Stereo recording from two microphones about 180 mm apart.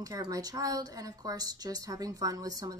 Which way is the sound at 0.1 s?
20° right (ahead or behind).